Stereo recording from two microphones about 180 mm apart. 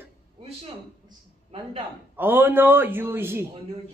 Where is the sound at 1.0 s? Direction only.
30° right (ahead or behind).